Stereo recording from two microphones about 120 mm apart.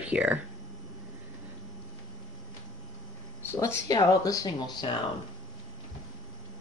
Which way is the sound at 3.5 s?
20° left (ahead or behind).